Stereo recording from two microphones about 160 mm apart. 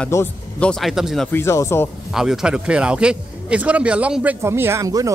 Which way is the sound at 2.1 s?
5° right (ahead or behind).